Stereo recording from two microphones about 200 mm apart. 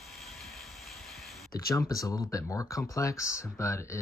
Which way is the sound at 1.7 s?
15° left (ahead or behind).